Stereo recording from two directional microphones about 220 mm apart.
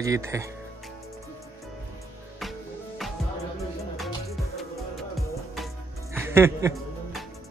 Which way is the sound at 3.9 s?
Centre (ahead or behind).